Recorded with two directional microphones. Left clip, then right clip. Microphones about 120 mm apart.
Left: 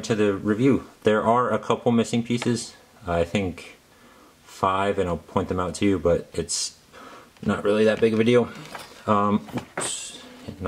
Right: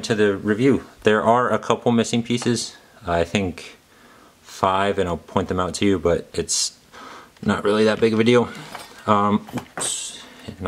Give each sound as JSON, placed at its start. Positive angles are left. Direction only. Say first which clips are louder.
{"t": 0.0, "sound": "speech", "louder": "right 3 dB", "side_deg": -15}
{"t": 9.0, "sound": "speech", "louder": "right 3 dB", "side_deg": -15}